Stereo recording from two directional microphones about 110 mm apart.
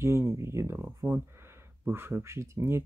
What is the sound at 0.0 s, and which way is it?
Speech, 25° right (ahead or behind).